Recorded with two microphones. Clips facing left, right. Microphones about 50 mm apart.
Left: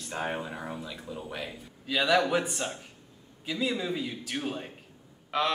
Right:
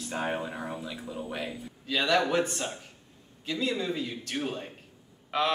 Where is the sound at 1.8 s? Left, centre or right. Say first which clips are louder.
Left 1 dB; centre.